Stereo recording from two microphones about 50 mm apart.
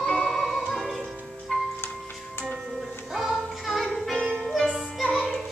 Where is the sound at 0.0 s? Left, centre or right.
Centre.